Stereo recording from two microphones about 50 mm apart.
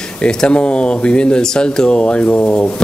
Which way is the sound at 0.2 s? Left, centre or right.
Left.